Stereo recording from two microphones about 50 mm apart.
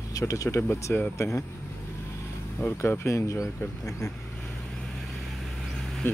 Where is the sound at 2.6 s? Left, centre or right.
Left.